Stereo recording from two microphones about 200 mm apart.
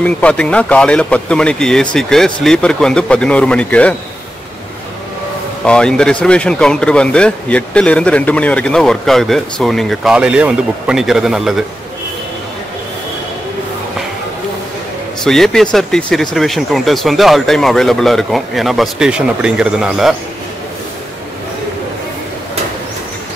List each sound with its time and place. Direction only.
0.0 s speech: 5° left (ahead or behind)
5.7 s speech: 5° left (ahead or behind)
15.2 s speech: centre (ahead or behind)